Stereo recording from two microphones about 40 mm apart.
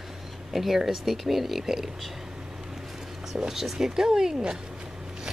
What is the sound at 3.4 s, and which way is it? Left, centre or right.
Speech, centre.